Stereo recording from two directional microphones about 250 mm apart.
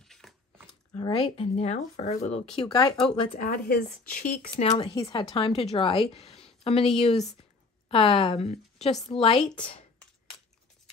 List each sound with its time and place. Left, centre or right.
0.1 s a sound: centre
0.9 s speech: left
3.3 s speech: left
4.9 s speech: centre